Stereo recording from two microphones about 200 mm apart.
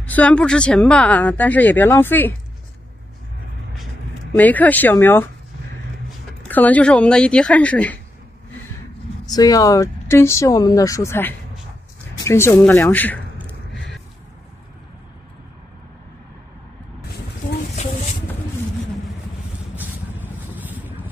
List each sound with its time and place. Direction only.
0.0 s speech: 5° left (ahead or behind)
4.4 s speech: 10° left (ahead or behind)
6.4 s a woman's voice: 10° left (ahead or behind)
9.2 s speech: 20° left (ahead or behind)
20.5 s boat: 10° right (ahead or behind)